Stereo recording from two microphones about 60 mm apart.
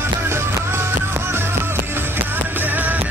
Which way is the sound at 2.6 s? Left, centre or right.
Right.